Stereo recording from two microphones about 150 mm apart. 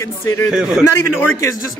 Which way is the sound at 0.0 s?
15° left (ahead or behind).